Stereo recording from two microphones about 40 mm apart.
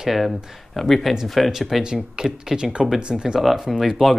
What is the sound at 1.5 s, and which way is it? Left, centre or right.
Speech, centre.